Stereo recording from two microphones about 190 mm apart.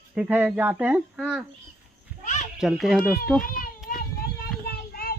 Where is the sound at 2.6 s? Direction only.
Centre (ahead or behind).